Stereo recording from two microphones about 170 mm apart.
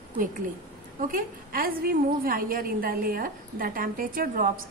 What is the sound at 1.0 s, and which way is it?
A woman's voice, 55° right (ahead or behind).